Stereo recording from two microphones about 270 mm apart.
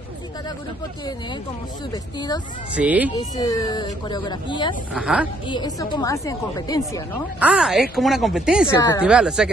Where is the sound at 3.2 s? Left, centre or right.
Centre.